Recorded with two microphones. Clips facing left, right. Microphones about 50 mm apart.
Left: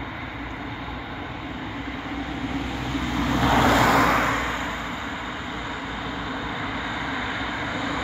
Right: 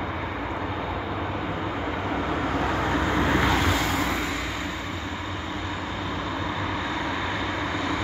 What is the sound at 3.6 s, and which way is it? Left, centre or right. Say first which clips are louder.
Vehicle: left 7 dB; left.